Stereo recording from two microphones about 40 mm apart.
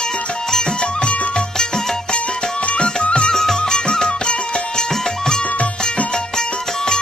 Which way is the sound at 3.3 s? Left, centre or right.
Centre.